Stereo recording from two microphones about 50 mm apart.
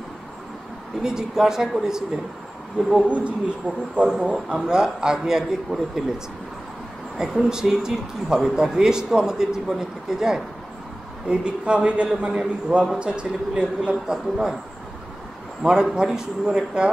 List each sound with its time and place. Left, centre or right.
1.0 s speech: centre
3.1 s a man's voice: right; by 6.0 s centre
7.2 s a man's voice: centre
15.6 s speech: centre